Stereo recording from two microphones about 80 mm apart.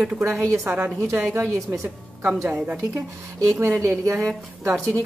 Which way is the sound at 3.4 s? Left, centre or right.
Right.